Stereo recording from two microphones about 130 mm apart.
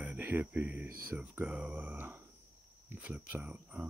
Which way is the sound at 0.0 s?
10° right (ahead or behind).